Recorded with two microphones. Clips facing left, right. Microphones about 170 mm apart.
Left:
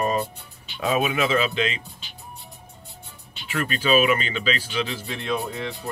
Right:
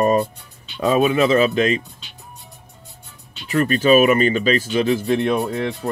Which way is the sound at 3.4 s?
40° right (ahead or behind).